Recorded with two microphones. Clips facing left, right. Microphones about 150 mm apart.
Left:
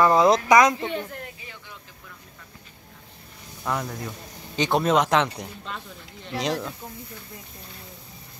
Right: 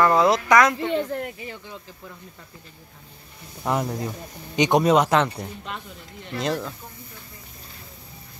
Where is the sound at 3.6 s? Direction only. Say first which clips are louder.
Right 4 dB; 25° right (ahead or behind); by 6.7 s centre (ahead or behind).